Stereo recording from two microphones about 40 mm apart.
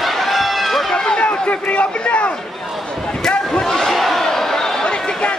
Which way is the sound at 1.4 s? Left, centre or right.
Left.